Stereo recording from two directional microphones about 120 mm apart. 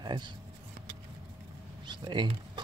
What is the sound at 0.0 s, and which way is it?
Speech, 40° right (ahead or behind).